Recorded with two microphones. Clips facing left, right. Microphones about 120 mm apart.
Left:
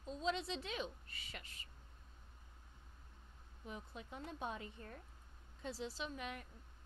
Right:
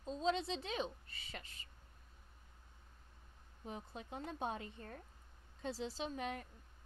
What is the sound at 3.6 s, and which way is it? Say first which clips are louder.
Speech: right 2 dB; 30° right (ahead or behind).